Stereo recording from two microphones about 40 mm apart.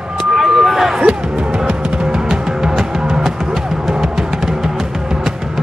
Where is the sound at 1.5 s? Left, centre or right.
Right.